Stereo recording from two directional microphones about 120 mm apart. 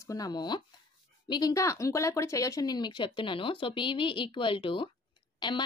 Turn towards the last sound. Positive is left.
turn(degrees=40)  # may be behind; listen again after turning